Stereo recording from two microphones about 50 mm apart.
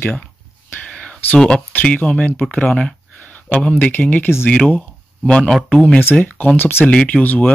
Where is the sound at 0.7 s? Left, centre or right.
Left.